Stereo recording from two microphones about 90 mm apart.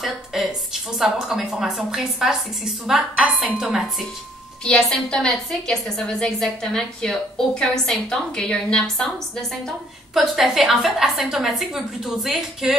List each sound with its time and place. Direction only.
0.0 s a woman's voice: centre (ahead or behind)
4.6 s a woman's voice: 5° left (ahead or behind)